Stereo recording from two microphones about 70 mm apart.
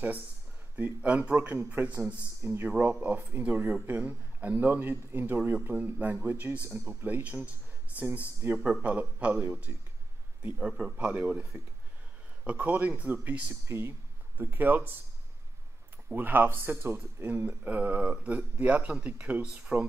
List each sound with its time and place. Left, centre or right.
0.7 s speech: right
10.7 s a man's voice: centre
11.0 s speech: right
12.4 s speech: right
13.7 s speech: right
16.1 s speech: right